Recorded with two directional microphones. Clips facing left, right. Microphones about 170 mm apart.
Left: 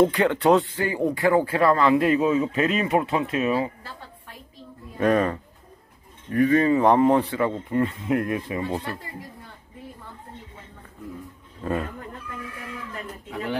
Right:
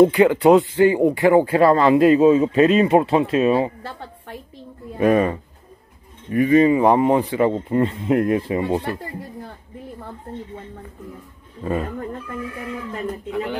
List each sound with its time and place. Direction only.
0.0 s speech: 5° right (ahead or behind)
0.7 s speech: 25° right (ahead or behind)
4.9 s speech: 10° right (ahead or behind)